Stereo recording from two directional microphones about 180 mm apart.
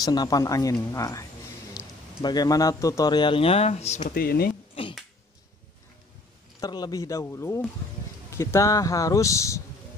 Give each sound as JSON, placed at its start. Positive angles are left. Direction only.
{"t": 0.0, "sound": "speech", "side_deg": 20}
{"t": 2.2, "sound": "speech", "side_deg": 20}
{"t": 4.1, "sound": "speech", "side_deg": 60}
{"t": 6.6, "sound": "speech", "side_deg": 20}